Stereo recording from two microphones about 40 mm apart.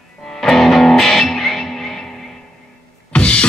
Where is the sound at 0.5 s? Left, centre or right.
Centre.